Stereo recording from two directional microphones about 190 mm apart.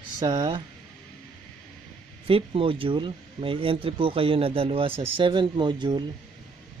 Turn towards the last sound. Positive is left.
turn(degrees=-25)  # may be behind; listen again after turning